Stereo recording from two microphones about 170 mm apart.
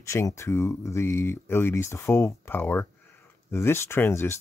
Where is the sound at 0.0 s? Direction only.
15° left (ahead or behind).